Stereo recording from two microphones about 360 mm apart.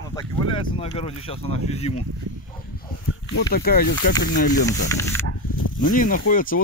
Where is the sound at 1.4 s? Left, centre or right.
Centre.